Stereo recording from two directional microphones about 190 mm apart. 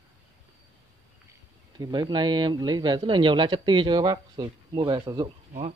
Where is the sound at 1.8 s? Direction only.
20° right (ahead or behind).